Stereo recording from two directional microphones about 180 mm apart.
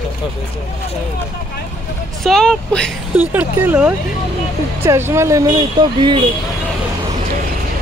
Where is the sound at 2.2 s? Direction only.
5° left (ahead or behind).